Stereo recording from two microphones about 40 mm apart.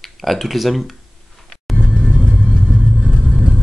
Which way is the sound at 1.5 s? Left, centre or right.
Centre.